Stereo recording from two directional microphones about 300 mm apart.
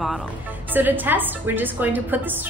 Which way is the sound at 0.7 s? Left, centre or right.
Centre.